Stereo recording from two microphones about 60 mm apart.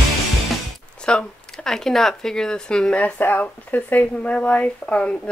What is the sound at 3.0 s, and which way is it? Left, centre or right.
Speech, left.